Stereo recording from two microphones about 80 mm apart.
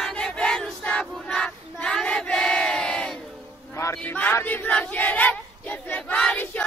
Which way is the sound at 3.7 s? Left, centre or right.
Left.